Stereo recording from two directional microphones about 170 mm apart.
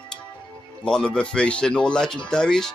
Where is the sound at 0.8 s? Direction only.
5° left (ahead or behind).